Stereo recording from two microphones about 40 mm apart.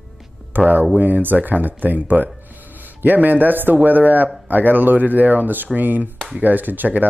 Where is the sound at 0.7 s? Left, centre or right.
Right.